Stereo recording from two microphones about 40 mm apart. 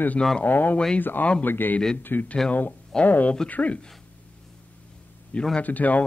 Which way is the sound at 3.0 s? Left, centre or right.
Left.